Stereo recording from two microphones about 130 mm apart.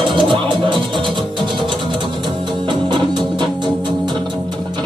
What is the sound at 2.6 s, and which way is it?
Music, 35° right (ahead or behind).